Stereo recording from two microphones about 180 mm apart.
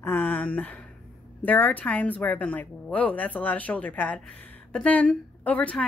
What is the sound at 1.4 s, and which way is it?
A woman's voice, 10° left (ahead or behind).